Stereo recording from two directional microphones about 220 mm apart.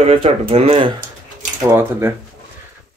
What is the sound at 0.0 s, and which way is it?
Speech, 25° right (ahead or behind).